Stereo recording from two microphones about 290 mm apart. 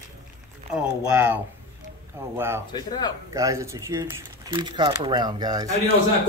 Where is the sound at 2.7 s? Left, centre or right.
Centre.